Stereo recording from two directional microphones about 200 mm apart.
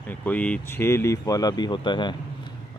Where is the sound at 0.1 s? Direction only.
10° left (ahead or behind).